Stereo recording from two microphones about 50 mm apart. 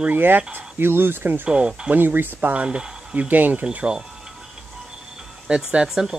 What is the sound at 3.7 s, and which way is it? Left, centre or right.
Speech, right.